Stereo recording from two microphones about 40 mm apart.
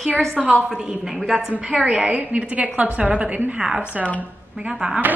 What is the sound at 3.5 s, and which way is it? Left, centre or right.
A woman's voice, centre.